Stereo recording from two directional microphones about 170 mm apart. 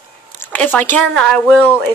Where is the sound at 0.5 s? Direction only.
10° left (ahead or behind).